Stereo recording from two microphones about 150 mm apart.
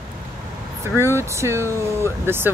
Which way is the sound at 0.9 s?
15° right (ahead or behind).